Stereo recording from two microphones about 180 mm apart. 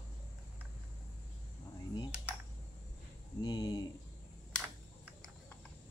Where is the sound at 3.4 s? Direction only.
20° left (ahead or behind).